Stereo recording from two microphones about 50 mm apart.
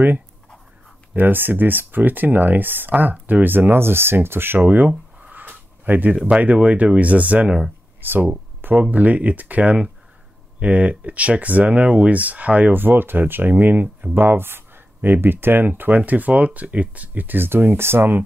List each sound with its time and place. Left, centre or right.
1.1 s speech: right
4.6 s speech: right
5.3 s a sound: right
6.2 s speech: right
8.0 s speech: right
8.5 s a sound: right
8.9 s speech: right
12.7 s speech: right
16.1 s speech: right